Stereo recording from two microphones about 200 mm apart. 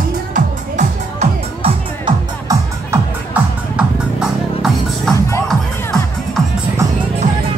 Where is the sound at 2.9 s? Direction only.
5° right (ahead or behind).